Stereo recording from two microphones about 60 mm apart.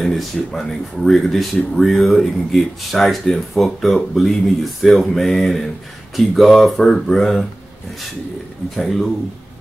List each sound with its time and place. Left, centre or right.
0.0 s speech: centre
8.7 s speech: centre